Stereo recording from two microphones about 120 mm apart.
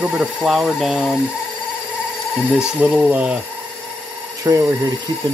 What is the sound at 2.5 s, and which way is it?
Speech, 10° right (ahead or behind).